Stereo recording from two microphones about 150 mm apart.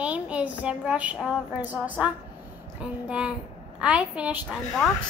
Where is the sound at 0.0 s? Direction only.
10° right (ahead or behind).